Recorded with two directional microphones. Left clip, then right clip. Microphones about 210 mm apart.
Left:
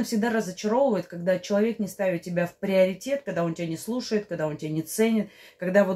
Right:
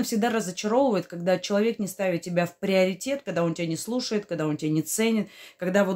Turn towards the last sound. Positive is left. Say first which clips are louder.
# left 2 dB
turn(degrees=-40)  # may be behind; listen again after turning